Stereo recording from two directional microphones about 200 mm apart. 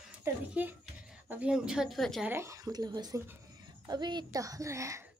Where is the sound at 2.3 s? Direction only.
15° right (ahead or behind).